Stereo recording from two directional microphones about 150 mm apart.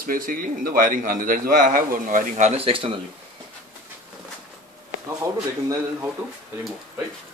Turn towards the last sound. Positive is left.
turn(degrees=-20)  # may be behind; listen again after turning